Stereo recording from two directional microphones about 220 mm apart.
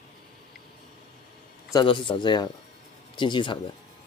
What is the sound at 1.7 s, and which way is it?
Speech, 20° left (ahead or behind).